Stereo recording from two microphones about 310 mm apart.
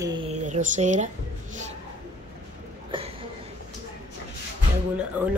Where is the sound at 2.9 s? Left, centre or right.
Centre.